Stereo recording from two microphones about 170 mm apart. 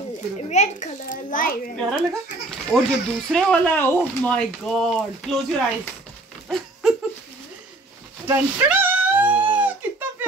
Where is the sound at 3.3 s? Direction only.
10° left (ahead or behind).